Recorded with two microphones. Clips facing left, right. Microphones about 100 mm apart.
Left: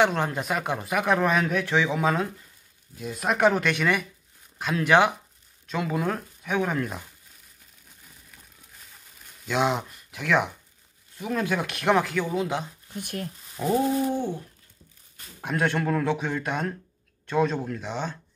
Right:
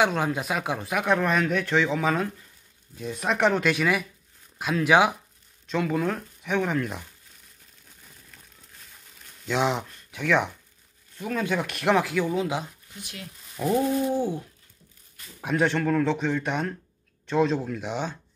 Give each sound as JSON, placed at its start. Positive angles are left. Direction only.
{"t": 0.0, "sound": "speech", "side_deg": 0}
{"t": 9.5, "sound": "speech", "side_deg": 0}
{"t": 12.9, "sound": "speech", "side_deg": 50}
{"t": 13.7, "sound": "speech", "side_deg": 0}
{"t": 15.4, "sound": "speech", "side_deg": 5}